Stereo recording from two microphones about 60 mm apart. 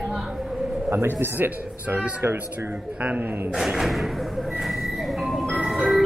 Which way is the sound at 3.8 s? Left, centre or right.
Centre.